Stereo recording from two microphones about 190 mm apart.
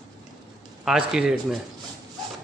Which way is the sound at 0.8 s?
5° right (ahead or behind).